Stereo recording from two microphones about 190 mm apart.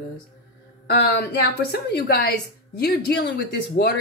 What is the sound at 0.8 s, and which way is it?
Speech, 55° left (ahead or behind).